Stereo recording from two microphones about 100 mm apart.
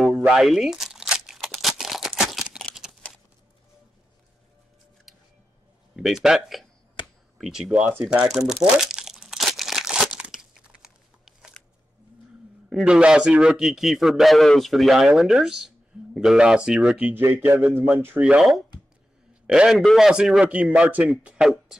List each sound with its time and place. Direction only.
0.0 s crumpling: 5° right (ahead or behind)
2.7 s a sound: 5° right (ahead or behind)
5.9 s a man's voice: centre (ahead or behind)
7.6 s a man's voice: 10° right (ahead or behind)
8.8 s crumpling: 5° right (ahead or behind)
12.6 s a man's voice: 5° right (ahead or behind)
17.0 s a man's voice: 20° right (ahead or behind)